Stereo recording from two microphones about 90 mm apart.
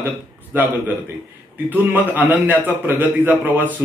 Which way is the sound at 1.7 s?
20° right (ahead or behind).